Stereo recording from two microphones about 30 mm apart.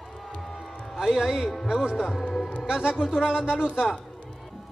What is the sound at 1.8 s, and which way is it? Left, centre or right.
Speech, right.